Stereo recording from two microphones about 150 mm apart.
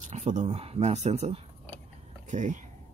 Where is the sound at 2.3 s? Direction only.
55° right (ahead or behind).